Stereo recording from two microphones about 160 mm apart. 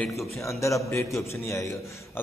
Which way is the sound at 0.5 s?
20° left (ahead or behind).